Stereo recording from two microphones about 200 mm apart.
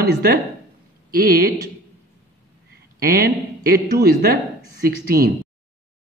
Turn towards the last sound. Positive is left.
turn(degrees=-45)  # may be behind; listen again after turning